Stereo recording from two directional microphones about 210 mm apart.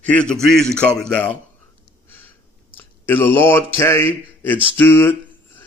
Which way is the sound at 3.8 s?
10° left (ahead or behind).